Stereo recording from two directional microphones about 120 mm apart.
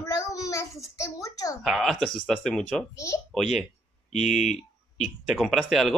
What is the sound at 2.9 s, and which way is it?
Speech, 25° left (ahead or behind).